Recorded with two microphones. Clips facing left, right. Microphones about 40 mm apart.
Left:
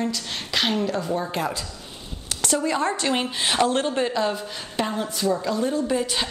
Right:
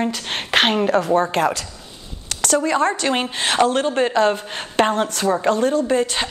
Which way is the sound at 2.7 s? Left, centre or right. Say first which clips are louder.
Right 3 dB; right.